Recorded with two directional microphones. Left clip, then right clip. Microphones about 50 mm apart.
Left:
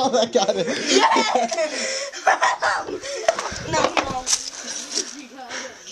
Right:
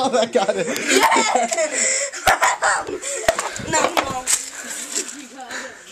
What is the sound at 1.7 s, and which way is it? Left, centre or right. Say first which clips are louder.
Laughter: right 4 dB; centre.